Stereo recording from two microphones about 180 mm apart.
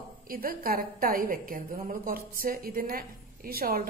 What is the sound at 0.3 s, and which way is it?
A woman's voice, 55° right (ahead or behind).